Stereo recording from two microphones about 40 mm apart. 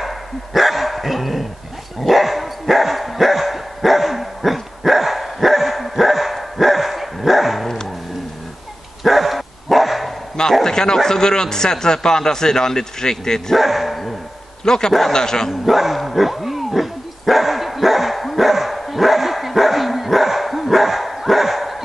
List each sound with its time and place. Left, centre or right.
0.0 s dog: centre
7.6 s dog: centre
9.0 s dog: centre
10.6 s a man's voice: centre
13.6 s dog: centre
14.6 s a man's voice: centre
15.6 s dog: centre